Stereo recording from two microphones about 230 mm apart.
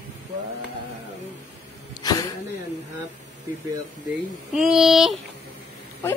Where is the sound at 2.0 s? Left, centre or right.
Centre.